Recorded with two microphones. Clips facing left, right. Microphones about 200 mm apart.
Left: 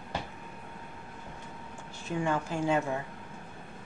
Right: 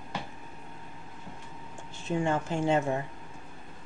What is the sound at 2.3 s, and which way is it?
Speech, 25° right (ahead or behind).